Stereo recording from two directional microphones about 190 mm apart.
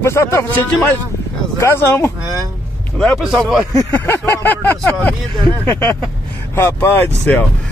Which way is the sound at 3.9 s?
10° left (ahead or behind).